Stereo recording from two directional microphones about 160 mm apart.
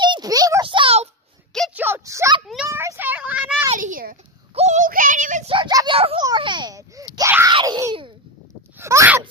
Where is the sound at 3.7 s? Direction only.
55° right (ahead or behind).